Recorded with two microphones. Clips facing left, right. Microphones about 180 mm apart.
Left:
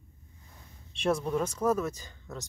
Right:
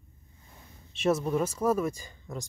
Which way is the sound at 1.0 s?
5° right (ahead or behind).